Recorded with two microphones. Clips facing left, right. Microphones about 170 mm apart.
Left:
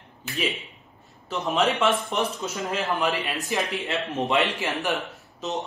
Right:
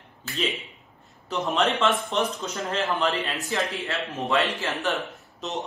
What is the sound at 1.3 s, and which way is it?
Speech, centre (ahead or behind).